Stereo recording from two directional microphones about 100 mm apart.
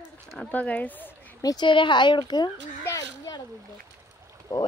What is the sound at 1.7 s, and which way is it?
Speech, 55° left (ahead or behind).